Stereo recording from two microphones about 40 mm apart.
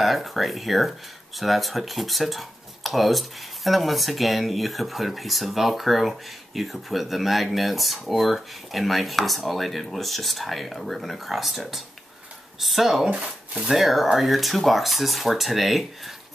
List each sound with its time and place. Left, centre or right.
0.0 s speech: centre
13.1 s speech: right
13.7 s speech: centre